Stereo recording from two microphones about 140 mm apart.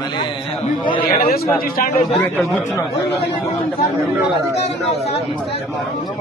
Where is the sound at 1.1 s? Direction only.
90° left.